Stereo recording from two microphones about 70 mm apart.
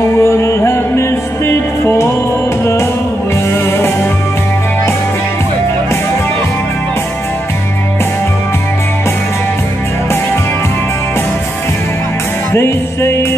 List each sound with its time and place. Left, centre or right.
0.2 s music: left
12.5 s music: left